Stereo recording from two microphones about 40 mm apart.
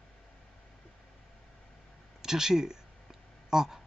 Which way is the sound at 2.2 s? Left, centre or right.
Centre.